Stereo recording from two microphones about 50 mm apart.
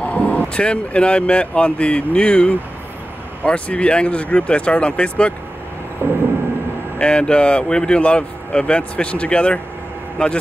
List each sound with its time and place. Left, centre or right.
0.0 s speech: left
6.0 s vehicle: right
7.0 s a man's voice: left